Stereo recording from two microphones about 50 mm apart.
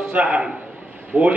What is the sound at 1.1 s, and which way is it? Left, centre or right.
Speech, right.